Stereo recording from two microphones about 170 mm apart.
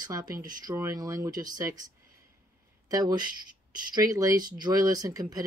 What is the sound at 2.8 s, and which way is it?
Speech, 20° right (ahead or behind).